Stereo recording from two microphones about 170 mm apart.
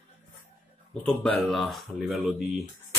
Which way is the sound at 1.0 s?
5° left (ahead or behind).